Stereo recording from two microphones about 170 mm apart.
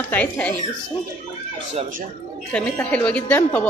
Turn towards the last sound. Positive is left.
turn(degrees=10)  # may be behind; listen again after turning